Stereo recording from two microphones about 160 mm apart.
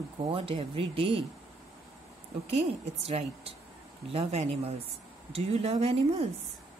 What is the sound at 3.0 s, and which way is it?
Speech, 40° right (ahead or behind).